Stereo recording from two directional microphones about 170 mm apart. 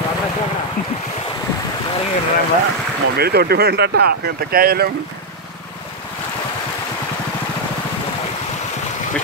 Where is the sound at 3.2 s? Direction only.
70° right (ahead or behind).